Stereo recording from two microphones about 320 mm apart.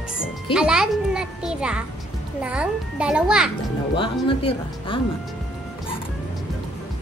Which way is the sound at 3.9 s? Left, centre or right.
Centre.